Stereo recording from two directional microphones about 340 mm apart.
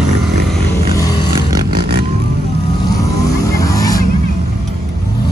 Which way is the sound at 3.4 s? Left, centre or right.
Centre.